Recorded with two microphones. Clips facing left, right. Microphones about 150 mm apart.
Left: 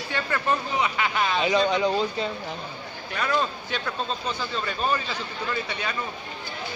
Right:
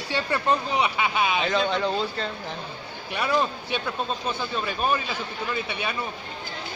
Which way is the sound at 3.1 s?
10° right (ahead or behind).